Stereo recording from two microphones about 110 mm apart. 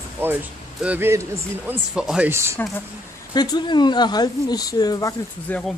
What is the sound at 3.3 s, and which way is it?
Speech, 40° left (ahead or behind).